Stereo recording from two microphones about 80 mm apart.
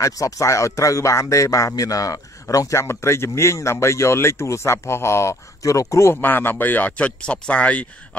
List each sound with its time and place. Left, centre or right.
0.0 s speech: left
6.2 s speech: left